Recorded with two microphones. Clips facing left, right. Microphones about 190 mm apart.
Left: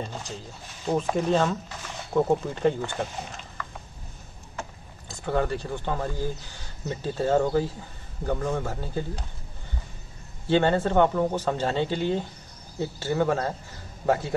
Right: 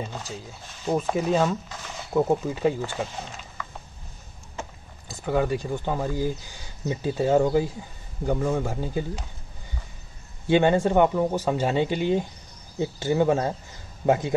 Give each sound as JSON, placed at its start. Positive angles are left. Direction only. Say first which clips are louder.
{"t": 0.8, "sound": "speech", "louder": "even", "side_deg": -5}
{"t": 5.0, "sound": "speech", "louder": "right 2 dB", "side_deg": -10}
{"t": 10.4, "sound": "speech", "louder": "right 2 dB", "side_deg": -15}